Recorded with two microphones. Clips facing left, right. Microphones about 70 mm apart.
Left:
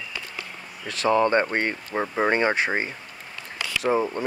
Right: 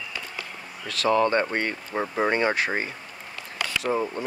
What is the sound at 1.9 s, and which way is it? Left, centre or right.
Speech, centre.